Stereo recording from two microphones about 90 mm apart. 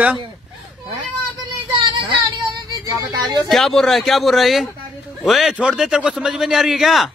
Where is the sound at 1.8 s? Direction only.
65° right (ahead or behind).